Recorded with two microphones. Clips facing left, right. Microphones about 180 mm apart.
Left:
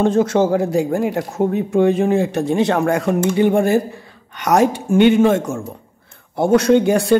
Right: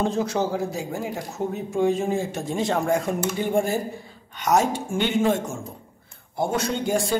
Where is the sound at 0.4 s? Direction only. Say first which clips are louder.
Left 9 dB; 60° left (ahead or behind); by 5.6 s 80° left.